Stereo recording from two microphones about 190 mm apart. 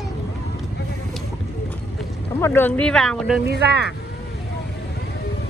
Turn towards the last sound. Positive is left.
turn(degrees=-60)  # may be behind; listen again after turning